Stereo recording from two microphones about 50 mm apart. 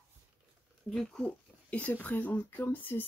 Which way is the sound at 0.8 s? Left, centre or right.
Centre.